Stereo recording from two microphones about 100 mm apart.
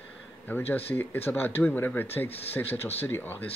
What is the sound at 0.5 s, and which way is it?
A man's voice, 20° left (ahead or behind).